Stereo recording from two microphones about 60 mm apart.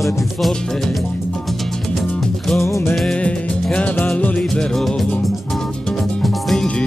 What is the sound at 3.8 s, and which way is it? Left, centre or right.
Music, left.